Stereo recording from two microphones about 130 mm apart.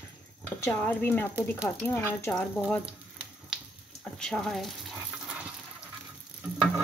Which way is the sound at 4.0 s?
5° left (ahead or behind).